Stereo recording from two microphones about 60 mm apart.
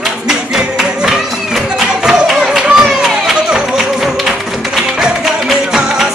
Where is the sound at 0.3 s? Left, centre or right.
Centre.